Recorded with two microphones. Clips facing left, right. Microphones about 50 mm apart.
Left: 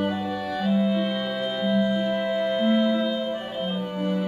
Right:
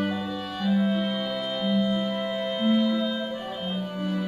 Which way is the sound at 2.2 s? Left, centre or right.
Centre.